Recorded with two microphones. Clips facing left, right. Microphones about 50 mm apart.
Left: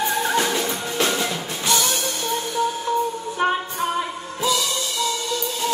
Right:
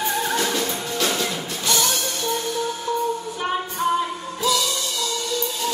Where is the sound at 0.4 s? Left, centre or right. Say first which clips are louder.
Left 2 dB; left.